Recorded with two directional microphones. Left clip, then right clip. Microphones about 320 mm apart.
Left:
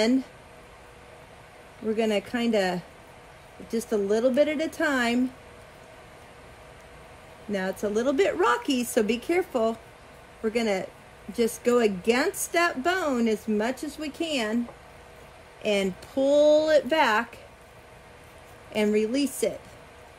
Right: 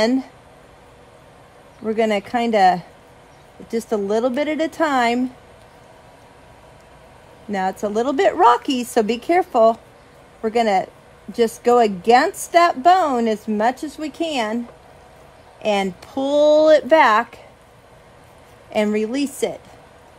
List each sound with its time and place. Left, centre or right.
2.0 s speech: right
7.5 s speech: right
15.6 s speech: right
18.7 s speech: right